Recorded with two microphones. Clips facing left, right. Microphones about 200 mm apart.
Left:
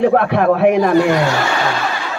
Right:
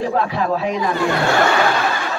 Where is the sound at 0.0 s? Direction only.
60° left (ahead or behind).